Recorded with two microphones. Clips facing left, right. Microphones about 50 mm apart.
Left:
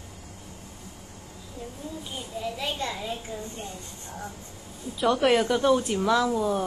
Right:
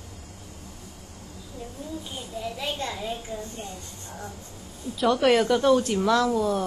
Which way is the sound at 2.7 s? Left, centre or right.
Centre.